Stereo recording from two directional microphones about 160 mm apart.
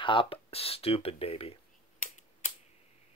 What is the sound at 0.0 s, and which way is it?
Speech, 30° left (ahead or behind).